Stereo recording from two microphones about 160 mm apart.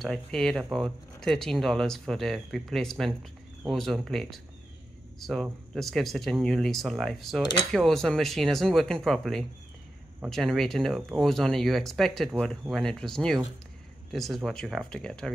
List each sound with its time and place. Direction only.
0.0 s speech: 5° left (ahead or behind)